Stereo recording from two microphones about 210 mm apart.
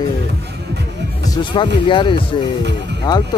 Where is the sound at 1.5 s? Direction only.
20° left (ahead or behind).